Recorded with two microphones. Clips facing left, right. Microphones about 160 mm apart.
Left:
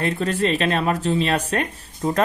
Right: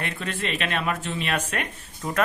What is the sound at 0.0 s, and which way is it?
A man's voice, 35° left (ahead or behind).